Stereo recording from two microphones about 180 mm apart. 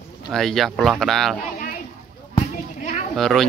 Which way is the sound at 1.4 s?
50° left (ahead or behind).